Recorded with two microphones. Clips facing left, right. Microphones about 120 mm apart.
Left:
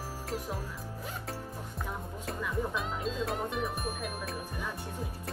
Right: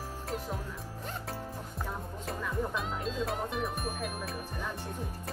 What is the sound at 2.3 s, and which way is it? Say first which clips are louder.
Speech: even; centre (ahead or behind).